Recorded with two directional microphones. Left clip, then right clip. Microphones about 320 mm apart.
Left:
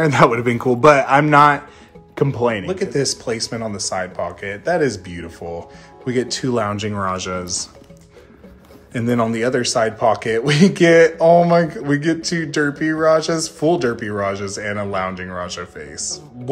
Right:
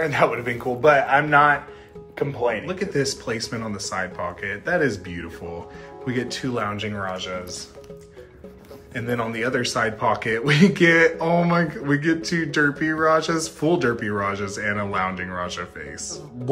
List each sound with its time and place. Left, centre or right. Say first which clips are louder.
0.0 s a man's voice: left 6 dB; centre
2.6 s a man's voice: left 4 dB; centre
8.9 s a man's voice: left 6 dB; centre